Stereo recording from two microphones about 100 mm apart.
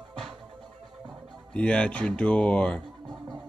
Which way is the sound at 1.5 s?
10° left (ahead or behind).